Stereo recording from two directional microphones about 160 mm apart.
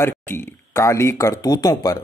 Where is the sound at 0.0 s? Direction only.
15° left (ahead or behind).